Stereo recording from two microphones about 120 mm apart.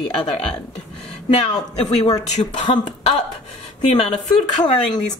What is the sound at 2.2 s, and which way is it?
Speech, 70° left (ahead or behind).